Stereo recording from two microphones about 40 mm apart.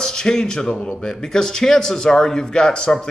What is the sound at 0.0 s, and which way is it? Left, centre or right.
A man's voice, centre.